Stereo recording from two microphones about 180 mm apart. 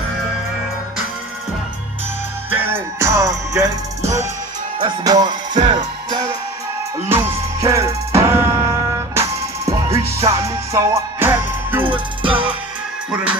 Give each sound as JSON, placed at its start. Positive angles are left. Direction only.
{"t": 2.5, "sound": "music", "side_deg": -10}
{"t": 7.1, "sound": "music", "side_deg": -10}
{"t": 12.2, "sound": "music", "side_deg": -30}
{"t": 13.1, "sound": "music", "side_deg": -5}